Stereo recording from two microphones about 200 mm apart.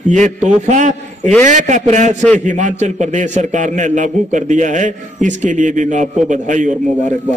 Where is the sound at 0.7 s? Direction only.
35° right (ahead or behind).